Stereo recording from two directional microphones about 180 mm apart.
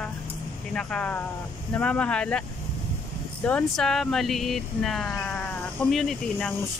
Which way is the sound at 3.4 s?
5° left (ahead or behind).